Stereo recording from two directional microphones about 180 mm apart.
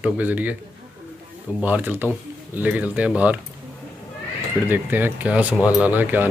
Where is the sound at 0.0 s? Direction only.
10° right (ahead or behind).